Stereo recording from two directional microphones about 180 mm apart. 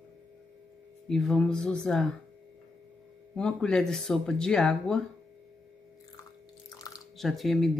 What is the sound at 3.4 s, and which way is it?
Speech, 5° left (ahead or behind).